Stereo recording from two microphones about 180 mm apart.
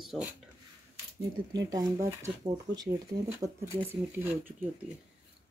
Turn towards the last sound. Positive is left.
turn(degrees=-10)  # may be behind; listen again after turning